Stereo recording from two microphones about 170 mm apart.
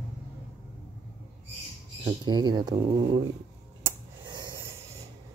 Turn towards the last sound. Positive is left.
turn(degrees=-25)  # may be behind; listen again after turning